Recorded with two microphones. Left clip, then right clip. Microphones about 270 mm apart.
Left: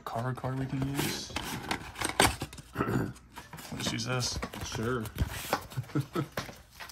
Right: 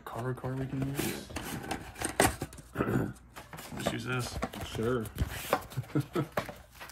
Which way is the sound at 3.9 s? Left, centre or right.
Centre.